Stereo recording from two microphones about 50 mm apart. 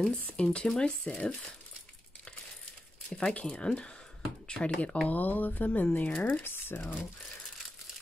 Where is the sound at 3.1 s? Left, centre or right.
Centre.